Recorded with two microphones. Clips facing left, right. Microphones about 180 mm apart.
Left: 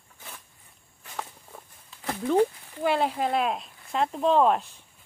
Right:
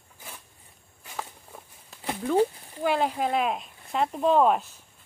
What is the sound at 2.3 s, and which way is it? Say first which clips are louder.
Speech: left 1 dB; 10° right (ahead or behind).